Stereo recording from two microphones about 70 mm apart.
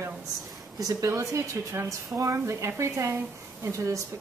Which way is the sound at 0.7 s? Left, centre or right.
Right.